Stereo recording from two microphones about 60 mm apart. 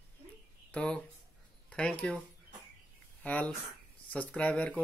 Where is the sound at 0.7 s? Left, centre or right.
Centre.